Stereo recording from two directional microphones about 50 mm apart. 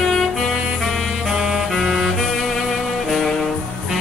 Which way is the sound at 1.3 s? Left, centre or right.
Centre.